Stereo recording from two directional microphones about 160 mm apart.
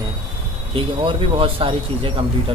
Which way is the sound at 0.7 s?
35° right (ahead or behind).